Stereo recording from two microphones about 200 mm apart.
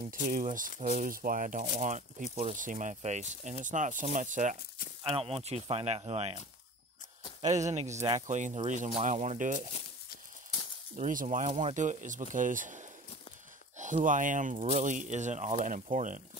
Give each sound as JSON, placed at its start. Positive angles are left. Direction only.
{"t": 0.0, "sound": "speech", "side_deg": -40}
{"t": 5.0, "sound": "speech", "side_deg": -30}
{"t": 7.5, "sound": "speech", "side_deg": -35}
{"t": 11.0, "sound": "speech", "side_deg": -40}